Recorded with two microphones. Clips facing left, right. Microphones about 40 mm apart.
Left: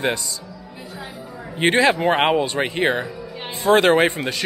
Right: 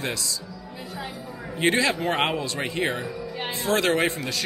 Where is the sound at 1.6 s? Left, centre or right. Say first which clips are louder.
Left 6 dB; left.